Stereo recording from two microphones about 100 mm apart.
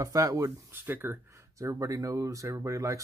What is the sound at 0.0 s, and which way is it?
Speech, 35° right (ahead or behind).